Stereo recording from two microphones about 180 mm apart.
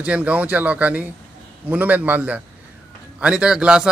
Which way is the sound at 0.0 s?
5° right (ahead or behind).